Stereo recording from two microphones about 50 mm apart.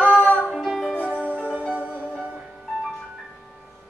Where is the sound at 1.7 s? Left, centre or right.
Right.